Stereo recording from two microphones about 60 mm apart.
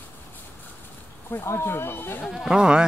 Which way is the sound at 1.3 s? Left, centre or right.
Left.